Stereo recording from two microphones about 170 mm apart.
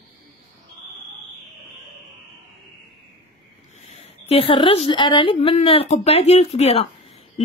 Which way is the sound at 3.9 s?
35° left (ahead or behind).